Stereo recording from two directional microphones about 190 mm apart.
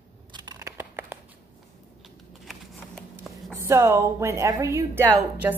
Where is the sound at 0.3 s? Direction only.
20° right (ahead or behind).